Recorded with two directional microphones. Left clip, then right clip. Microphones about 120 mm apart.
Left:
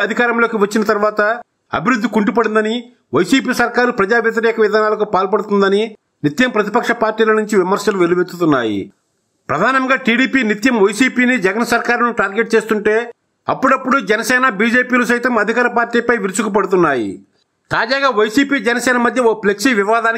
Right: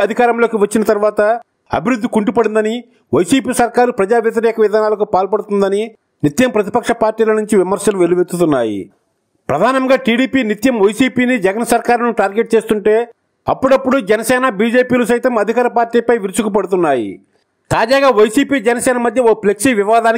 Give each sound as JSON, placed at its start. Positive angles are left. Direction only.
{"t": 0.0, "sound": "a man's voice", "side_deg": -45}